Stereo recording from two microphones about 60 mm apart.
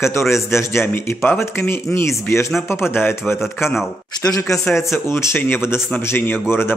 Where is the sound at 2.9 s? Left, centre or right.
Left.